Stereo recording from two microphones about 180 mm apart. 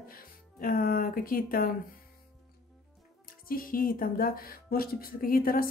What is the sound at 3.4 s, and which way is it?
Speech, 55° left (ahead or behind).